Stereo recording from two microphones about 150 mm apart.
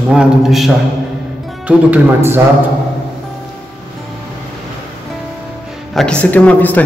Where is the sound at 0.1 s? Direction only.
5° right (ahead or behind).